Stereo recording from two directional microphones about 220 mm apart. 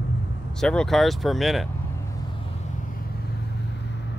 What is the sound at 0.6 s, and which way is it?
Speech, 5° left (ahead or behind).